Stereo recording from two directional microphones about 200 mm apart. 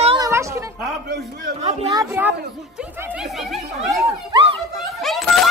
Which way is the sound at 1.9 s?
10° right (ahead or behind).